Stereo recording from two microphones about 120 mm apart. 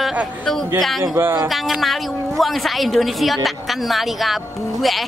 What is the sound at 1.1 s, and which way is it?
Speech, 20° right (ahead or behind).